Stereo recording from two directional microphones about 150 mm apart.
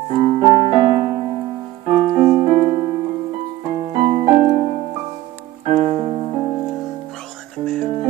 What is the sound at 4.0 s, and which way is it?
Music, 40° right (ahead or behind).